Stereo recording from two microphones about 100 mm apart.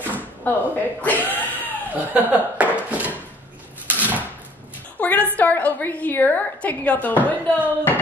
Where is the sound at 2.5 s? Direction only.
15° right (ahead or behind).